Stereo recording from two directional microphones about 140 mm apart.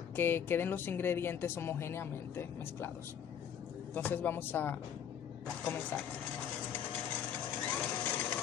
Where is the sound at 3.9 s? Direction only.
15° left (ahead or behind).